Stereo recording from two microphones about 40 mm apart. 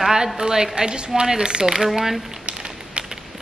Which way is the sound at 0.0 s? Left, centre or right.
Centre.